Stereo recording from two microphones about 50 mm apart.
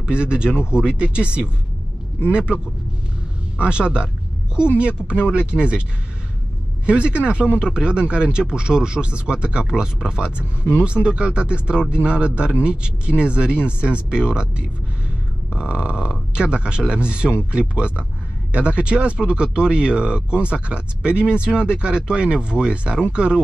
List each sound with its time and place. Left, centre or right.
0.0 s speech: right
6.9 s speech: right